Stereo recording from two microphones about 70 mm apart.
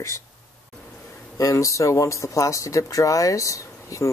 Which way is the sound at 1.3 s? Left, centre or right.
Left.